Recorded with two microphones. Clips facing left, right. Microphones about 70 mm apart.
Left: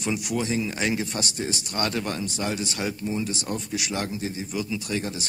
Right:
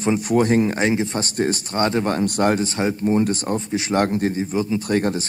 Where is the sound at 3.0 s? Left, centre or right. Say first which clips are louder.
Right 9 dB; right.